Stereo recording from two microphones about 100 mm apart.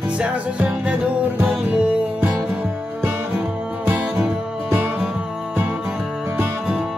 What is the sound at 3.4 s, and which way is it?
Music, 20° right (ahead or behind).